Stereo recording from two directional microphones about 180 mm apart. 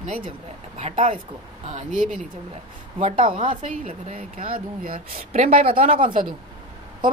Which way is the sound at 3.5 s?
45° right (ahead or behind).